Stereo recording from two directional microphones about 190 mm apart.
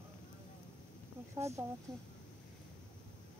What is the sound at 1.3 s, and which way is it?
Speech, 15° right (ahead or behind).